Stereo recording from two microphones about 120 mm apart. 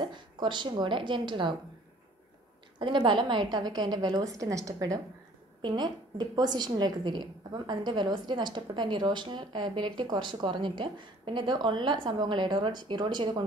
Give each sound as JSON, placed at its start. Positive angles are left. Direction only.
{"t": 0.0, "sound": "a woman's voice", "side_deg": -40}
{"t": 2.8, "sound": "a woman's voice", "side_deg": -40}